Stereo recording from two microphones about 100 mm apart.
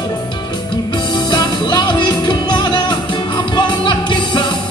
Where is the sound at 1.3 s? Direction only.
45° left (ahead or behind).